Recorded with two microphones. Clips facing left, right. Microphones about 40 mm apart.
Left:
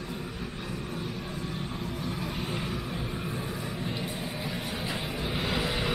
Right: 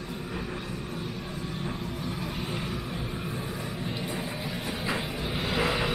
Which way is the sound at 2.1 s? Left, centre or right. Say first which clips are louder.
Even; centre.